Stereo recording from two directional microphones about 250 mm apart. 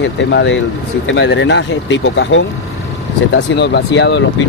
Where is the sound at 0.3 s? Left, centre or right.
Left.